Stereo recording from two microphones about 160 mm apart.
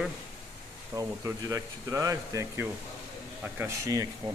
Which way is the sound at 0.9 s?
20° right (ahead or behind).